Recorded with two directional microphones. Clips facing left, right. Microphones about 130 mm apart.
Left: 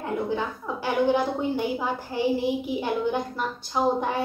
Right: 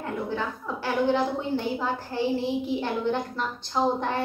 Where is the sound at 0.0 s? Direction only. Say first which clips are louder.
Left 2 dB; 15° left (ahead or behind).